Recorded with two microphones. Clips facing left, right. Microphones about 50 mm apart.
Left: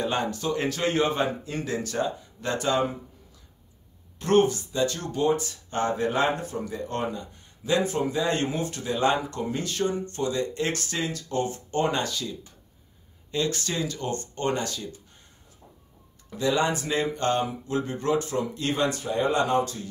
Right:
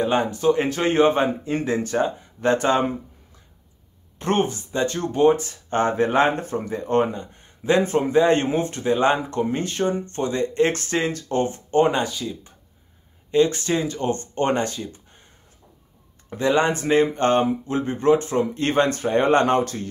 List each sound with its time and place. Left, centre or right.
0.0 s speech: right
4.2 s speech: right
16.3 s speech: right